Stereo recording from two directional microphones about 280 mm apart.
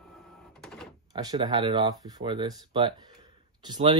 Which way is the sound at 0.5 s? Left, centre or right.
Centre.